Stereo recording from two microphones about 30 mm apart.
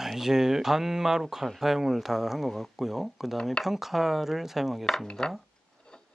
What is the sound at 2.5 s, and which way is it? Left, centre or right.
Speech, centre.